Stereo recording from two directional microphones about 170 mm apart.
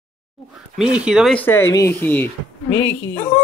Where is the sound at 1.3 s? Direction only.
10° left (ahead or behind).